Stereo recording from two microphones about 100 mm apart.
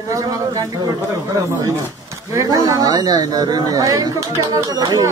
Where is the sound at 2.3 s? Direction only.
35° right (ahead or behind).